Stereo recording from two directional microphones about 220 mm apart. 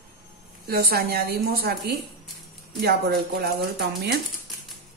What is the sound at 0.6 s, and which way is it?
A woman's voice, 45° right (ahead or behind).